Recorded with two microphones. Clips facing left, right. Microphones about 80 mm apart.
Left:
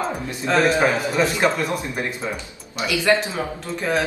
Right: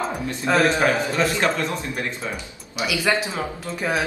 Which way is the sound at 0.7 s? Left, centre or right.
Centre.